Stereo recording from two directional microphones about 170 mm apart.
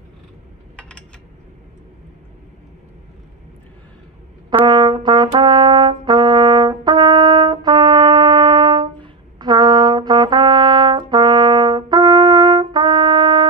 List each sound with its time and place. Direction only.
0.7 s a sound: 5° left (ahead or behind)
4.6 s brass instrument: 25° right (ahead or behind)
5.4 s trumpet: 25° right (ahead or behind)